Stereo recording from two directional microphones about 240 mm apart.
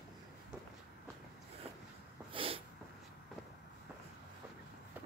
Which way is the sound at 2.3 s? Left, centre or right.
Right.